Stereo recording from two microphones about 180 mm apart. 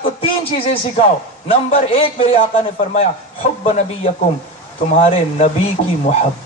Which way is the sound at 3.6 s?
35° left (ahead or behind).